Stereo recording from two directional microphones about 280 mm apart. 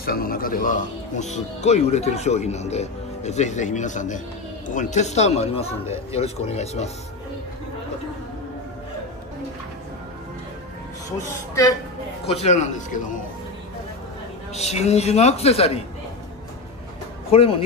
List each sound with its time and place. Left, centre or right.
0.0 s speech: left
11.1 s speech: centre
12.3 s speech: left
14.5 s speech: left
17.3 s speech: centre